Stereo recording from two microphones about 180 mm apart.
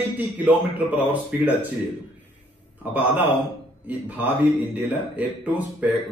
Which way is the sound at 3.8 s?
10° right (ahead or behind).